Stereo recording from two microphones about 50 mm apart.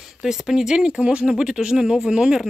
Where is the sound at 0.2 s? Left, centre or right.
Centre.